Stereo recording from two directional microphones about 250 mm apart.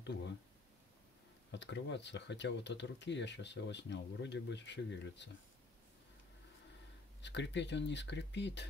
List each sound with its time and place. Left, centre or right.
0.0 s speech: left
1.5 s speech: left
7.2 s speech: left